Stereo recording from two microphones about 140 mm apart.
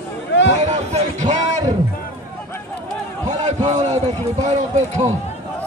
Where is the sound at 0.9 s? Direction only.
60° right (ahead or behind).